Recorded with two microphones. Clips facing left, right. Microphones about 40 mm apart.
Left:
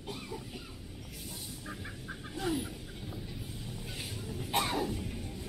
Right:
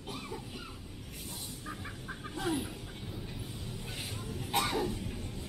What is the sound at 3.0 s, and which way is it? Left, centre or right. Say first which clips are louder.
Train: left 1 dB; right.